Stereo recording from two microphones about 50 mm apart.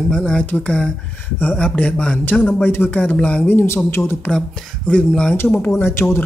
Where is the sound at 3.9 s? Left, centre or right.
Left.